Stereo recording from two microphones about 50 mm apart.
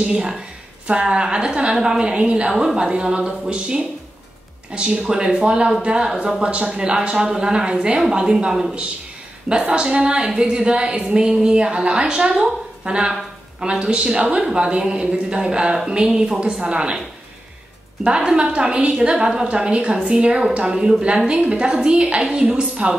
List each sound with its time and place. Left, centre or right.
0.0 s a woman's voice: right
2.5 s a woman's voice: centre
18.0 s a woman's voice: centre